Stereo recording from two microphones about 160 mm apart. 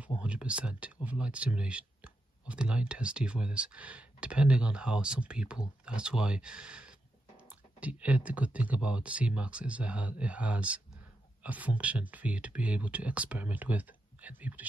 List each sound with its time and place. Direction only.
0.2 s speech: 5° right (ahead or behind)